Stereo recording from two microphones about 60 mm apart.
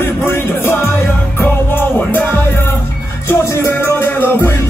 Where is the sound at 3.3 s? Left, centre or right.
Left.